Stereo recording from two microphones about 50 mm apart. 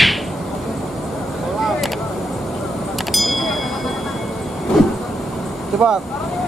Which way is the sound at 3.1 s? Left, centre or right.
Centre.